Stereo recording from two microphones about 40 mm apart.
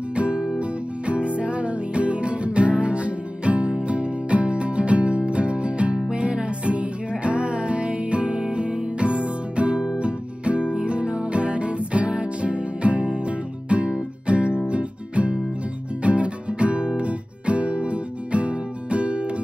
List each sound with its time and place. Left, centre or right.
0.1 s music: right